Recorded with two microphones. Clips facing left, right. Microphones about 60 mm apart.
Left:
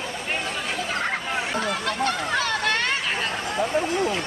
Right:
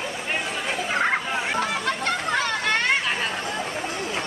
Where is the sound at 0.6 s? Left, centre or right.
Centre.